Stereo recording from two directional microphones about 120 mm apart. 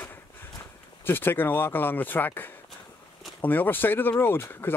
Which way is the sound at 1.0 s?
15° left (ahead or behind).